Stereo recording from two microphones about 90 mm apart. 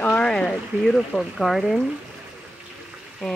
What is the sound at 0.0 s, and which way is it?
Speech, 15° left (ahead or behind).